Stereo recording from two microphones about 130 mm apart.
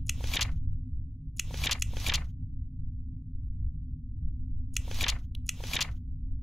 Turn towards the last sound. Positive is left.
turn(degrees=0)  # may be behind; listen again after turning